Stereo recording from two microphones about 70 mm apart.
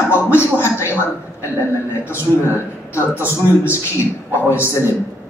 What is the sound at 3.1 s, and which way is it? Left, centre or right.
Speech, right.